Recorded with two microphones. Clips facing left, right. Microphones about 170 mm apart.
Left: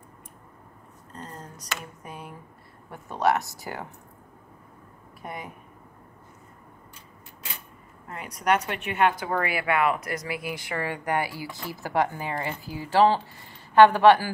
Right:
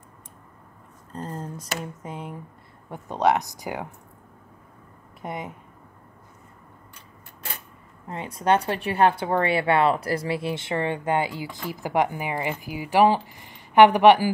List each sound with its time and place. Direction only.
1.1 s speech: 30° right (ahead or behind)
5.2 s speech: 20° right (ahead or behind)
8.1 s speech: 25° right (ahead or behind)